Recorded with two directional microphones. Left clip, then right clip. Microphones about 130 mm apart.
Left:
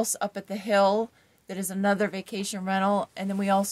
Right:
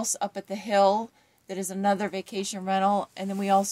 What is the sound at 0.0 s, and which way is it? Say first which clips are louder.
A woman's voice: left 1 dB; 25° left (ahead or behind).